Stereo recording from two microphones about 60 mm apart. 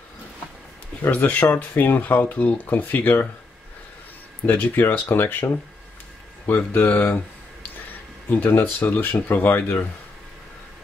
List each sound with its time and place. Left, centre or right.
1.0 s speech: left
4.5 s speech: left
8.3 s speech: left